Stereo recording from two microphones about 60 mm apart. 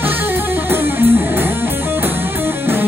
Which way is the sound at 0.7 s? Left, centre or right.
Right.